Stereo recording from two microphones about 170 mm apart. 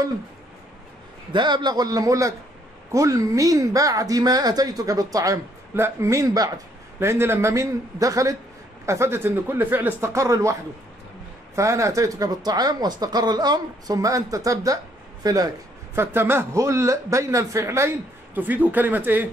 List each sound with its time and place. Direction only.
1.3 s a man's voice: 25° right (ahead or behind); by 19.2 s 10° right (ahead or behind)